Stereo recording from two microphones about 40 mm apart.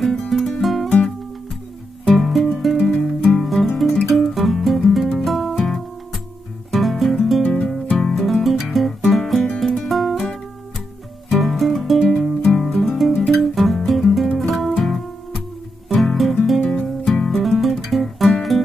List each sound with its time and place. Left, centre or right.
0.0 s music: centre
2.1 s music: centre
6.7 s guitar: centre
7.4 s music: left
8.1 s music: centre
11.2 s music: centre
13.4 s guitar: centre
14.4 s music: centre
17.9 s guitar: centre